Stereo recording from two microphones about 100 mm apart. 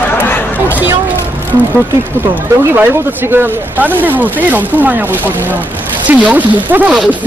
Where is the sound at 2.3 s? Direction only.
20° right (ahead or behind).